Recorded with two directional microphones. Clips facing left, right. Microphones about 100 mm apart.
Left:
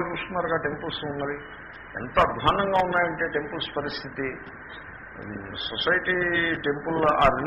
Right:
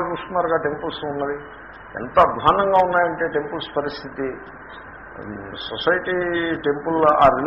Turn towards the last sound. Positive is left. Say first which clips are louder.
# right 6 dB
turn(degrees=-30)  # may be behind; listen again after turning